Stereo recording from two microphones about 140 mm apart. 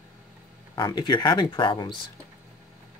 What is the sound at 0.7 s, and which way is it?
Speech, 30° left (ahead or behind).